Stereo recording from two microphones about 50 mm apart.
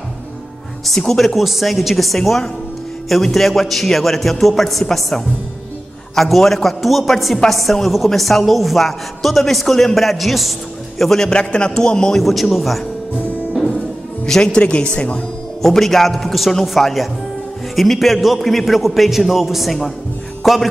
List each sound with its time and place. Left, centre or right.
0.8 s a woman's voice: centre
12.2 s a woman's voice: centre
14.2 s speech: centre
15.6 s a woman's voice: centre